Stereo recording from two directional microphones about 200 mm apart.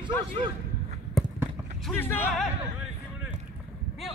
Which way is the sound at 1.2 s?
Centre (ahead or behind).